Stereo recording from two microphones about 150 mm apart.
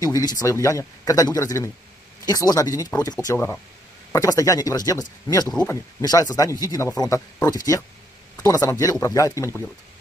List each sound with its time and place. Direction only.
0.0 s speech: 25° left (ahead or behind)